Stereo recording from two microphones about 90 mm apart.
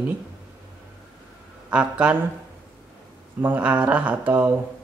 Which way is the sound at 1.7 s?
15° right (ahead or behind).